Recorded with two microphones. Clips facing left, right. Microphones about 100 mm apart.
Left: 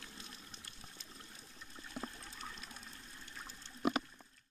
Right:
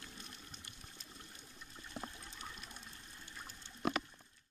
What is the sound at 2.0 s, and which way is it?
Water, 5° left (ahead or behind).